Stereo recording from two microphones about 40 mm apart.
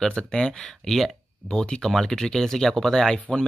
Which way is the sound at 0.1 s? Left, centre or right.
Centre.